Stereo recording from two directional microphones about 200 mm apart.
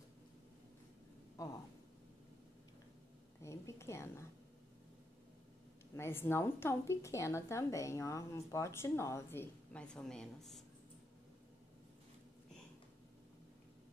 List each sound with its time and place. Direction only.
1.4 s speech: 15° left (ahead or behind)
3.4 s a woman's voice: 15° left (ahead or behind)
5.9 s a woman's voice: 10° left (ahead or behind)